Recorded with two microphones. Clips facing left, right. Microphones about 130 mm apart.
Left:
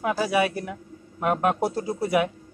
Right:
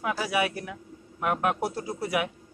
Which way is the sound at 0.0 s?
30° left (ahead or behind).